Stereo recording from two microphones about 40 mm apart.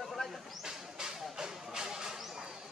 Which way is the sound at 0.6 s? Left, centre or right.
Centre.